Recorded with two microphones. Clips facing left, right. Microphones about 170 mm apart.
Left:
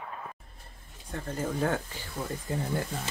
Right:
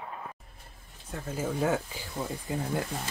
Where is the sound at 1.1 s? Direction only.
5° right (ahead or behind).